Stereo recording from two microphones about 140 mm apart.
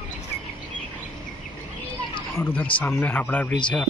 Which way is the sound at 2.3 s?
10° left (ahead or behind).